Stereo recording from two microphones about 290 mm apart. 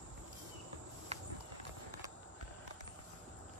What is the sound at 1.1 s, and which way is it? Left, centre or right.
Walk, right.